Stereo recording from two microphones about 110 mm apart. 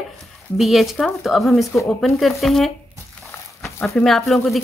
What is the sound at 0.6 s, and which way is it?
Speech, centre (ahead or behind).